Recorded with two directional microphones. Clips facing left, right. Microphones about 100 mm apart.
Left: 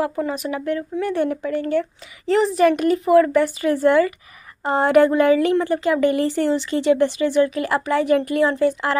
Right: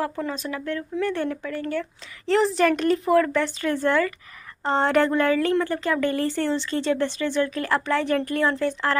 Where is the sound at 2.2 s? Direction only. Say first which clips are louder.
Left 4 dB; 5° left (ahead or behind).